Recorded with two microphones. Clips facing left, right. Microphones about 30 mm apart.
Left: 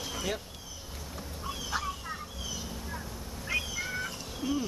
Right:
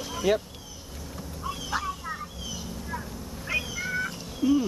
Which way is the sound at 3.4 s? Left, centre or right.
Centre.